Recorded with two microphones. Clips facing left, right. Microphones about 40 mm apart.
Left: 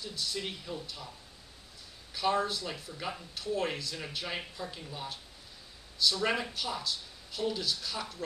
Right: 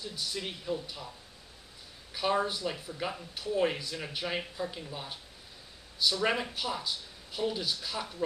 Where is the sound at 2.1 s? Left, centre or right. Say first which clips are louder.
Even; centre.